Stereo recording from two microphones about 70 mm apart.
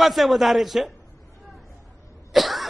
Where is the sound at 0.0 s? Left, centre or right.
Centre.